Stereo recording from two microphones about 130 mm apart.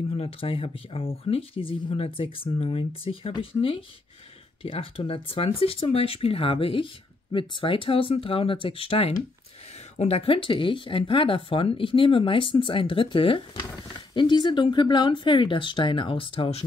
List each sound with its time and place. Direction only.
0.1 s speech: 45° left (ahead or behind)